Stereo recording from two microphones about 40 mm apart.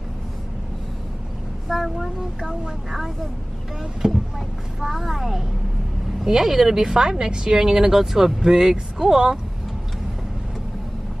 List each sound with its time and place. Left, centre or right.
1.7 s speech: centre
4.0 s speech: right
4.7 s a woman's voice: centre